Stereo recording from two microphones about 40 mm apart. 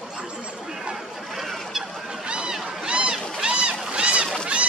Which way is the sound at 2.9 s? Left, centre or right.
Right.